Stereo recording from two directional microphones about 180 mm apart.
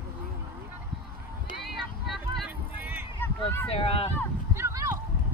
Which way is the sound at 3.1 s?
10° left (ahead or behind).